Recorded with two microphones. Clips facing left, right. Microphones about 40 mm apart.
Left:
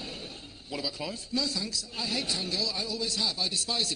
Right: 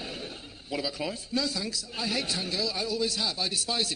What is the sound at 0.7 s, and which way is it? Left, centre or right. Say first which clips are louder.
A man's voice: right 3 dB; centre.